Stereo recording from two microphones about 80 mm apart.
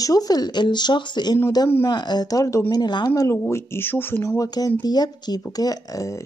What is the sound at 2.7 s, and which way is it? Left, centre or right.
Speech, left.